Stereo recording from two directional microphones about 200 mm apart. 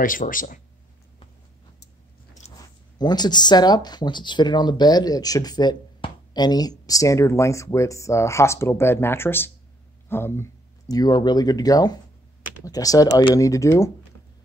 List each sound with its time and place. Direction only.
0.0 s speech: 45° left (ahead or behind)
3.0 s speech: 20° left (ahead or behind)